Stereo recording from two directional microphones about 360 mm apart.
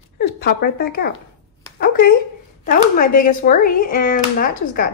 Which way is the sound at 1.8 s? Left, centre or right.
Left.